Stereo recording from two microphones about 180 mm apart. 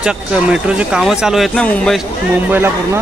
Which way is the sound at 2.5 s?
10° right (ahead or behind).